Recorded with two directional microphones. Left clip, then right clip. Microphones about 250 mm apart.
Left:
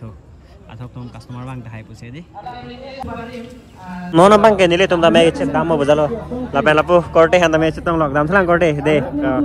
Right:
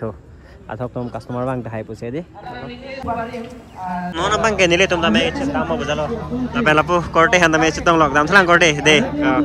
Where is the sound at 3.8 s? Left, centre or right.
Centre.